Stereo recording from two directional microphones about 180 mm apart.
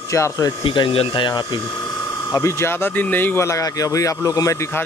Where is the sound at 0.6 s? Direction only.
30° left (ahead or behind).